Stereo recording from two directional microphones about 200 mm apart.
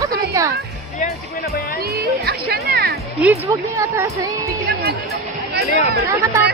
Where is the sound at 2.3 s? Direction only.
55° right (ahead or behind).